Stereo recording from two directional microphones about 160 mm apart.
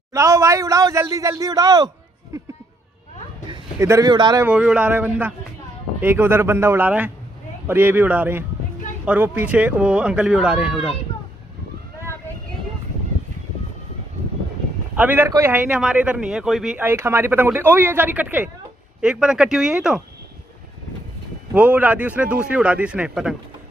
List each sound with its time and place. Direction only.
0.1 s a man's voice: 20° right (ahead or behind)
3.8 s a man's voice: 20° right (ahead or behind)
4.5 s a man's voice: 5° right (ahead or behind)
15.0 s a man's voice: 10° right (ahead or behind)
21.5 s a man's voice: 10° right (ahead or behind)